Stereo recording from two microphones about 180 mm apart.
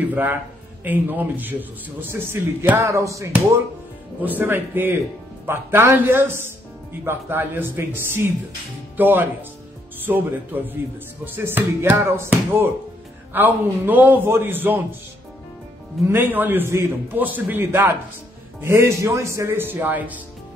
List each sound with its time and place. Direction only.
0.1 s a man's voice: 10° right (ahead or behind)
16.1 s a man's voice: 10° right (ahead or behind)